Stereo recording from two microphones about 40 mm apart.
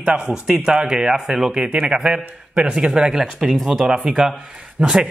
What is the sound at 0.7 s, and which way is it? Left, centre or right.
Speech, centre.